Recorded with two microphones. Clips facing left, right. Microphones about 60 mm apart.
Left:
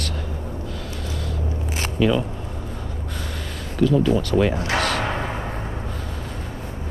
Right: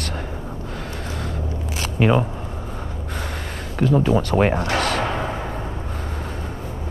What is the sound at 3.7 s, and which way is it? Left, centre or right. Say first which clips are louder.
Speech: even; right.